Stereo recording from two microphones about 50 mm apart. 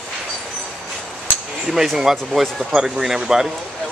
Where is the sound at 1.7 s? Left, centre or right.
Centre.